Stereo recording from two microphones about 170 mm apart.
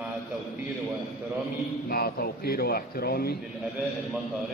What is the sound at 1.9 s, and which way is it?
Speech, 65° left (ahead or behind).